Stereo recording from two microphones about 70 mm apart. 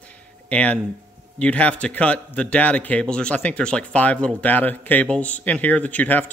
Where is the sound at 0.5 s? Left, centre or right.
Centre.